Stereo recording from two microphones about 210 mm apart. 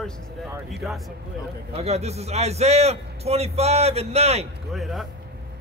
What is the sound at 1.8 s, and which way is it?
A man's voice, 30° right (ahead or behind).